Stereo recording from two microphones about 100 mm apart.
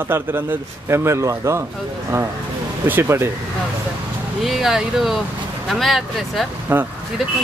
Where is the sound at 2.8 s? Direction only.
20° right (ahead or behind).